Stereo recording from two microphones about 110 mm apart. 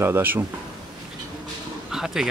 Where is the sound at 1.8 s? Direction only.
5° right (ahead or behind).